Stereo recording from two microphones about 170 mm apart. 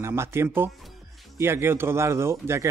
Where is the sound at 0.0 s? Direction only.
15° right (ahead or behind).